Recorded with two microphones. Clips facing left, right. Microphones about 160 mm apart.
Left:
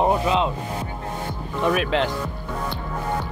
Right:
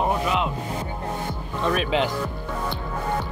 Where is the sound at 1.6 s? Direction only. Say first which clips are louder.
Left 1 dB; 5° left (ahead or behind).